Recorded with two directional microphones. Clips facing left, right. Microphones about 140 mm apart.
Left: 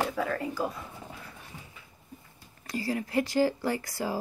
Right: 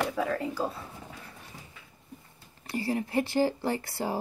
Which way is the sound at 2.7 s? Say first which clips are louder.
Right 1 dB; 25° right (ahead or behind).